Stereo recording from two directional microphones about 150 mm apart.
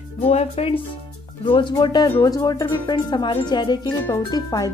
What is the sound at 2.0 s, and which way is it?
Speech, 20° left (ahead or behind).